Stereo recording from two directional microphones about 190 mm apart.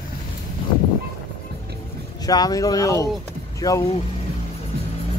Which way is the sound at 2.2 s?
20° left (ahead or behind).